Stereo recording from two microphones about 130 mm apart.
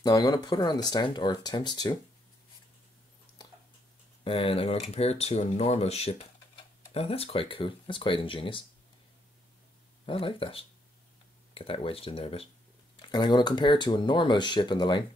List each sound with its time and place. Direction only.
0.0 s speech: 30° left (ahead or behind)
4.2 s speech: 45° left (ahead or behind)
10.0 s speech: 45° left (ahead or behind)
13.1 s speech: 35° left (ahead or behind)